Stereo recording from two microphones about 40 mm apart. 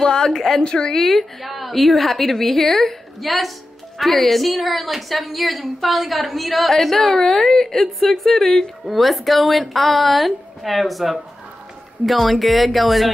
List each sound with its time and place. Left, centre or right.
0.0 s a woman's voice: centre
0.4 s a woman's voice: centre